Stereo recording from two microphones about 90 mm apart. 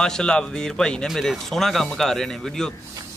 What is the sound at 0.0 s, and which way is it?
A man's voice, 10° left (ahead or behind).